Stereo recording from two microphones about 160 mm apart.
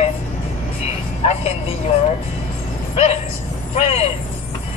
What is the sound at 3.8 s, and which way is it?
Speech, 40° left (ahead or behind).